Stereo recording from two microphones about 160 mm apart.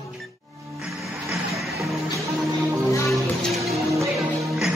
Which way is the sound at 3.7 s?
Centre (ahead or behind).